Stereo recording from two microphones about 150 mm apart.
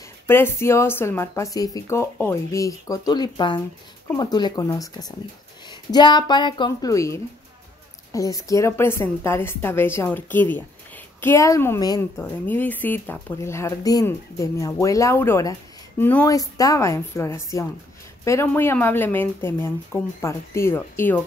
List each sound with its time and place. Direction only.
0.3 s speech: 15° left (ahead or behind)
16.3 s speech: 25° left (ahead or behind)